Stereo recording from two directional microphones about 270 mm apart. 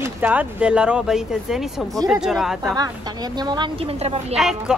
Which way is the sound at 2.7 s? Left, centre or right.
Centre.